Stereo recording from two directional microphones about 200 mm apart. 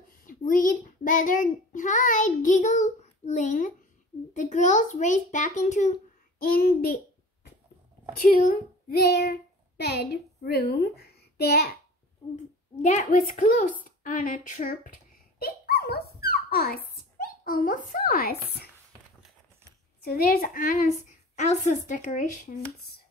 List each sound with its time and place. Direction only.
0.2 s a child's voice: 40° left (ahead or behind)
6.4 s a child's voice: 50° left (ahead or behind)
8.2 s a child's voice: 45° left (ahead or behind)
12.8 s a child's voice: 40° left (ahead or behind)
15.3 s dog: 50° left (ahead or behind)
16.9 s speech: 45° left (ahead or behind)
20.0 s a child's voice: 50° left (ahead or behind)